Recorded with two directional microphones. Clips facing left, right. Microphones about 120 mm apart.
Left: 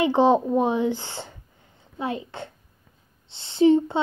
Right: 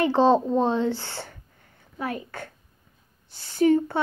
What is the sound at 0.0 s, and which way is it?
A woman's voice, 15° left (ahead or behind).